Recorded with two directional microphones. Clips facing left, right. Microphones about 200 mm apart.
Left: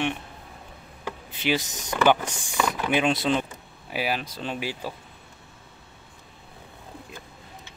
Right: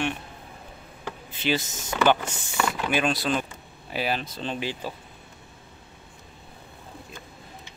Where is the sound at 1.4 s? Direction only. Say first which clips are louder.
Left 1 dB; 15° left (ahead or behind).